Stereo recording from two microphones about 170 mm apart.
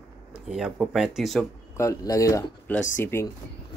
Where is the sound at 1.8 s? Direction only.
20° left (ahead or behind).